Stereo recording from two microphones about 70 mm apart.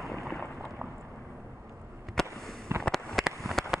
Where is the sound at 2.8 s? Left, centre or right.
Centre.